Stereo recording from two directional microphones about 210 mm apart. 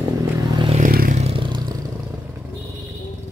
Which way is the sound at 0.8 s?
40° right (ahead or behind).